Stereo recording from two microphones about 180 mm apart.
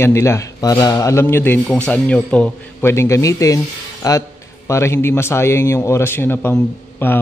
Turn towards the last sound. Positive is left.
turn(degrees=10)  # may be behind; listen again after turning